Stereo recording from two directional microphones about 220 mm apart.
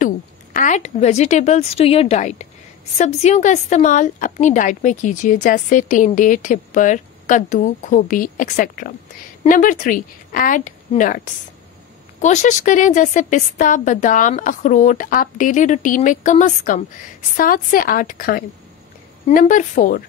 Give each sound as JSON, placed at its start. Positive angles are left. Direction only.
{"t": 0.0, "sound": "a woman's voice", "side_deg": 35}
{"t": 12.2, "sound": "a woman's voice", "side_deg": 30}